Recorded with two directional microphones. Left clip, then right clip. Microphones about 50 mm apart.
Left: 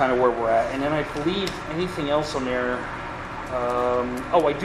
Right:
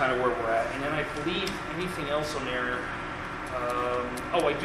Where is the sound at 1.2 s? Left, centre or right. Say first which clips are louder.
Left 4 dB; left.